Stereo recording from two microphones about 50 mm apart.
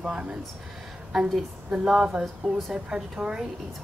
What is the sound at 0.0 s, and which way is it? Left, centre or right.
Speech, centre.